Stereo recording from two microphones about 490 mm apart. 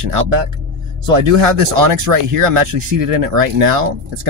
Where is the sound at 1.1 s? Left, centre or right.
Right.